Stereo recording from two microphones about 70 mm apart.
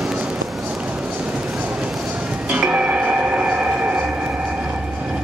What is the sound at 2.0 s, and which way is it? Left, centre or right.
Music, centre.